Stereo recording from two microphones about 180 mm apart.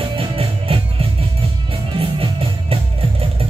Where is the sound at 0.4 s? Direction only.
30° right (ahead or behind).